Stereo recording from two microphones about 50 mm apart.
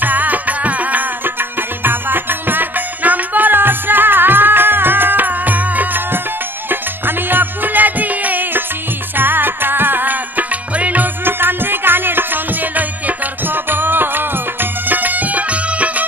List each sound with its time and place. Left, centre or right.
0.0 s music: right
11.2 s music: right